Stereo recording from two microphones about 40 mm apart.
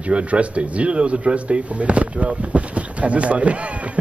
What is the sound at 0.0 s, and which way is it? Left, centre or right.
Speech, right.